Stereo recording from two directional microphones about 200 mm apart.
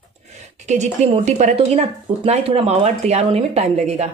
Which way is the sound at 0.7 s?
35° right (ahead or behind).